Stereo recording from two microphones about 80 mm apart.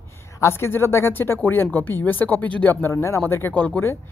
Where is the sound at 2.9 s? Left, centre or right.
Left.